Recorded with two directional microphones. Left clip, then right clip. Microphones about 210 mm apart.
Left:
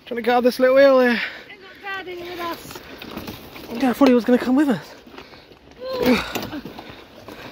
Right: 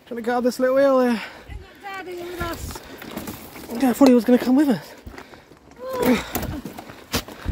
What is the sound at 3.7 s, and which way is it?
Speech, 15° right (ahead or behind).